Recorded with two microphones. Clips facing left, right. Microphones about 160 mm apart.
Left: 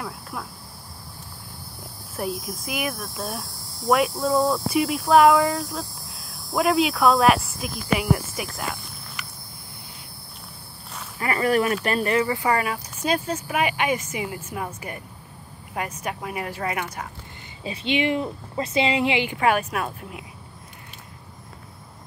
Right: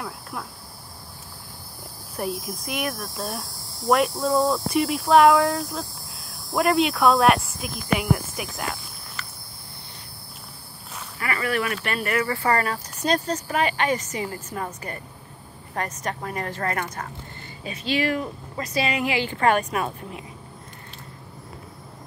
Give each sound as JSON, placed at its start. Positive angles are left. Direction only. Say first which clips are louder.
{"t": 0.0, "sound": "insect", "louder": "even", "side_deg": 0}
{"t": 2.1, "sound": "speech", "louder": "even", "side_deg": 0}
{"t": 9.2, "sound": "a sound", "louder": "right 1 dB", "side_deg": 15}
{"t": 11.1, "sound": "speech", "louder": "left 5 dB", "side_deg": 35}
{"t": 12.4, "sound": "speech", "louder": "even", "side_deg": 10}
{"t": 17.6, "sound": "speech", "louder": "left 1 dB", "side_deg": 20}